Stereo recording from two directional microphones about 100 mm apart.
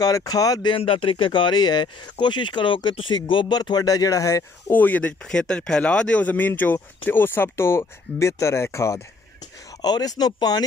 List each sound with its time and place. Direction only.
0.0 s speech: 35° left (ahead or behind)
0.7 s speech: 65° left (ahead or behind); by 4.5 s 35° left (ahead or behind)
4.6 s speech: 15° left (ahead or behind)
9.8 s speech: 40° left (ahead or behind)